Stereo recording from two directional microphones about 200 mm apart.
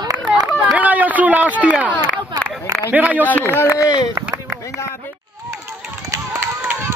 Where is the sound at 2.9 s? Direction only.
10° right (ahead or behind).